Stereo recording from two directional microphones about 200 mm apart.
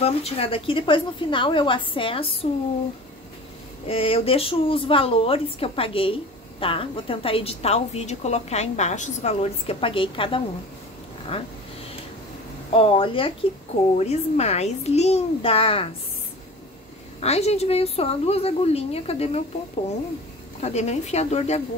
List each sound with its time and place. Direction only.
0.0 s speech: 30° left (ahead or behind)
3.8 s speech: 30° left (ahead or behind)
12.7 s a woman's voice: 25° left (ahead or behind)
17.2 s a woman's voice: 30° left (ahead or behind)
20.6 s a woman's voice: 35° left (ahead or behind)